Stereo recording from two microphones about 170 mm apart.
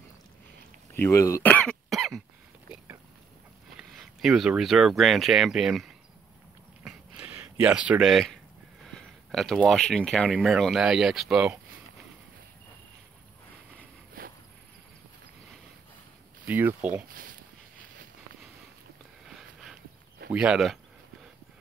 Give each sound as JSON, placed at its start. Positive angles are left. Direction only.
{"t": 0.9, "sound": "cough", "side_deg": 15}
{"t": 3.7, "sound": "speech", "side_deg": 0}
{"t": 6.8, "sound": "a sound", "side_deg": -5}
{"t": 7.6, "sound": "speech", "side_deg": -5}
{"t": 14.2, "sound": "cricket", "side_deg": -55}
{"t": 16.4, "sound": "speech", "side_deg": -10}
{"t": 17.1, "sound": "speech", "side_deg": -55}
{"t": 19.2, "sound": "sniff", "side_deg": 0}
{"t": 20.3, "sound": "speech", "side_deg": -5}